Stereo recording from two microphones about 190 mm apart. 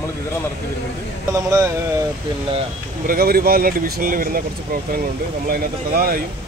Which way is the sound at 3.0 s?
50° right (ahead or behind).